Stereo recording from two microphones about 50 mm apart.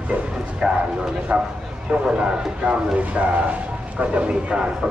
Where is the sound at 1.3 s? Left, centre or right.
Right.